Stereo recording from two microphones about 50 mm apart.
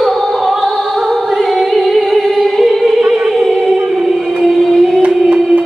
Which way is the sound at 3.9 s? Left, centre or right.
Centre.